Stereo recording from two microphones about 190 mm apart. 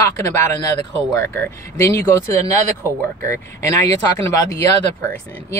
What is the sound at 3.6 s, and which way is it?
Speech, 15° left (ahead or behind).